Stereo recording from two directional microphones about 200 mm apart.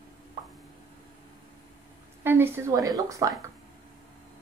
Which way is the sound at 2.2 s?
10° right (ahead or behind).